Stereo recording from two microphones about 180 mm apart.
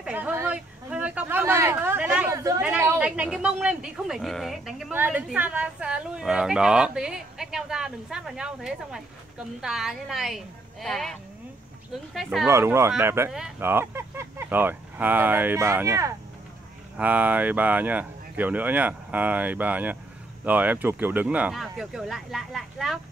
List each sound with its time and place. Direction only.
0.0 s a sound: 10° right (ahead or behind)
2.6 s speech: 10° right (ahead or behind)
12.4 s speech: 15° right (ahead or behind)